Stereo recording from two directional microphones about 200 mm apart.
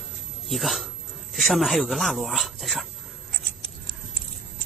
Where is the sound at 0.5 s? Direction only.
Centre (ahead or behind).